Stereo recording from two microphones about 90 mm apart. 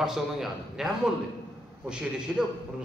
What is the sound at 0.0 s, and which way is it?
A man's voice, 5° right (ahead or behind).